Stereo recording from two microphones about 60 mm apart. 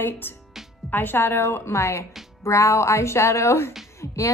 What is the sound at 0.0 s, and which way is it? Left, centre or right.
A woman's voice, left.